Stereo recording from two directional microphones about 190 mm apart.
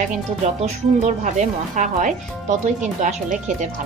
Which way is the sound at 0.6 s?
40° right (ahead or behind).